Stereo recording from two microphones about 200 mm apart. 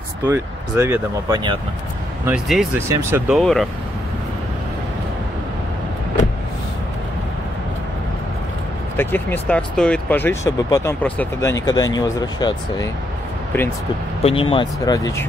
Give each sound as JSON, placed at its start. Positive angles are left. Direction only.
{"t": 0.3, "sound": "speech", "side_deg": -10}
{"t": 2.9, "sound": "speech", "side_deg": -15}
{"t": 3.3, "sound": "speech", "side_deg": 0}
{"t": 8.9, "sound": "speech", "side_deg": 10}
{"t": 14.2, "sound": "speech", "side_deg": 25}